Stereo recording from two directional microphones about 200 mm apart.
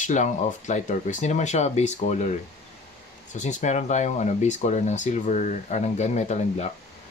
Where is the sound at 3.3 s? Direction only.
35° left (ahead or behind).